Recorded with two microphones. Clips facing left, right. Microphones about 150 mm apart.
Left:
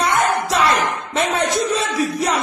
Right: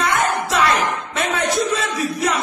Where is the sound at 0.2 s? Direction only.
30° left (ahead or behind).